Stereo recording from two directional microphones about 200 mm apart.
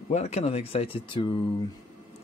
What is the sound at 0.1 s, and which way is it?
Speech, 35° left (ahead or behind).